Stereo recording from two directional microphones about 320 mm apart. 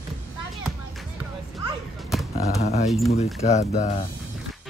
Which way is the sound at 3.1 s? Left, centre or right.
Left.